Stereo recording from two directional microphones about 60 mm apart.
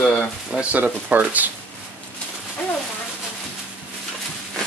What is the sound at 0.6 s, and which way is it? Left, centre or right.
Speech, centre.